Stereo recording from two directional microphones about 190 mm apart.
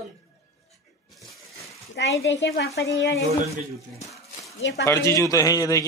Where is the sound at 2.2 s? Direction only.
65° left (ahead or behind).